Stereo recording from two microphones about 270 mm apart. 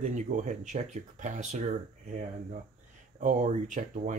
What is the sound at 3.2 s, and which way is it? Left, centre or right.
Speech, right.